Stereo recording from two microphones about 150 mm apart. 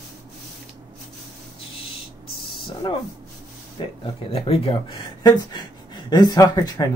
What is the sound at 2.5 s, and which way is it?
A man's voice, 35° left (ahead or behind).